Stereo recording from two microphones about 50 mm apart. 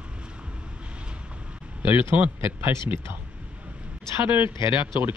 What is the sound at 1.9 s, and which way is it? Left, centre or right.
Speech, right.